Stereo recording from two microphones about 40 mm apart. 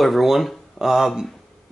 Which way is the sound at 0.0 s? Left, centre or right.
Centre.